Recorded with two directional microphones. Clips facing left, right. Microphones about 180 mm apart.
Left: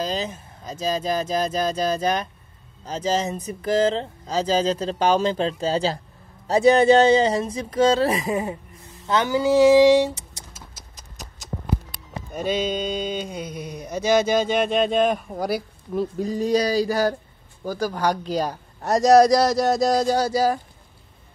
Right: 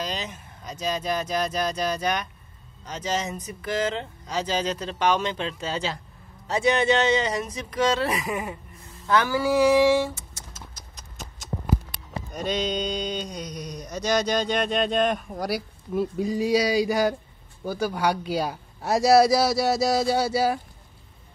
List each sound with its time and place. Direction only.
0.0 s speech: 35° left (ahead or behind)
12.3 s a man's voice: 5° left (ahead or behind)